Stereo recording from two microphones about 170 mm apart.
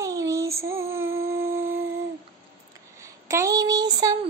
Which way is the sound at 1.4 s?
15° right (ahead or behind).